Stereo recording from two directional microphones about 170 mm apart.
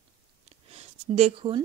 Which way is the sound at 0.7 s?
40° right (ahead or behind).